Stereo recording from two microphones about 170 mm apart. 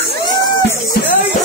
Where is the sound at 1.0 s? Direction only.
70° left (ahead or behind).